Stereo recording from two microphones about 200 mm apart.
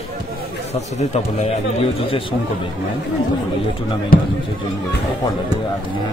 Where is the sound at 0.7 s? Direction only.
35° left (ahead or behind).